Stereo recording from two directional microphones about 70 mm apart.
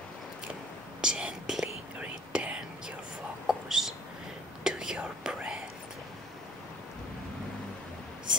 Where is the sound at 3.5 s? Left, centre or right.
Centre.